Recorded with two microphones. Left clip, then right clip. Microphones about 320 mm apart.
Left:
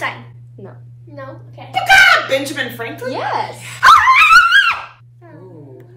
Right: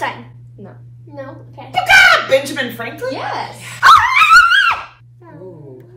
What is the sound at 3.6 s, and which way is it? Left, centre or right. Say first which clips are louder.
Dog: right 1 dB; centre.